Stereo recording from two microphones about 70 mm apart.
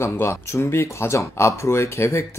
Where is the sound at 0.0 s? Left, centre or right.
Left.